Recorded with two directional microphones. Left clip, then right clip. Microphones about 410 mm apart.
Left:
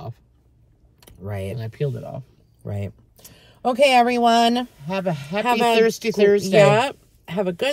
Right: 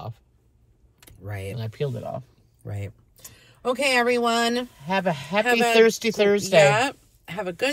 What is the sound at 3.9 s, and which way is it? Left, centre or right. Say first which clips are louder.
Speech: left 5 dB; centre.